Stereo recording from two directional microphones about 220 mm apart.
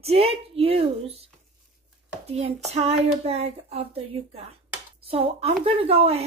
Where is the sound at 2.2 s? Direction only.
30° right (ahead or behind).